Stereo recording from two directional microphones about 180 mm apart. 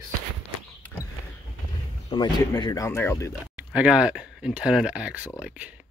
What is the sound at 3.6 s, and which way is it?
Speech, 5° right (ahead or behind).